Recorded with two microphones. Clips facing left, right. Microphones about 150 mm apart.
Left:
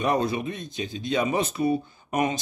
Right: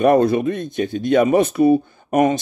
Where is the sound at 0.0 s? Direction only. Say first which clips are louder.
Right 10 dB; 55° right (ahead or behind).